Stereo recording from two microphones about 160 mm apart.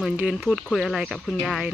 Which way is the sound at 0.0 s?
5° right (ahead or behind).